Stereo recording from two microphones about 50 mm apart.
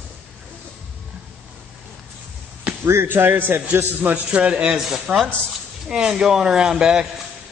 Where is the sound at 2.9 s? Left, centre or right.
Right.